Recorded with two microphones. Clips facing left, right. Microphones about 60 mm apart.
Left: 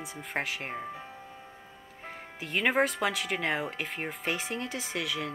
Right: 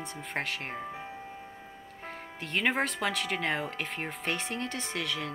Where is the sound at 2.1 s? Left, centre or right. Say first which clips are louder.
Even; centre.